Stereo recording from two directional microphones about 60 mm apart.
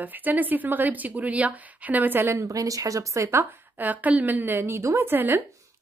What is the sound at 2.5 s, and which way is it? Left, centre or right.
Speech, right.